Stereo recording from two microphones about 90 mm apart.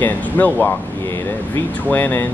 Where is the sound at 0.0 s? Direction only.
20° left (ahead or behind).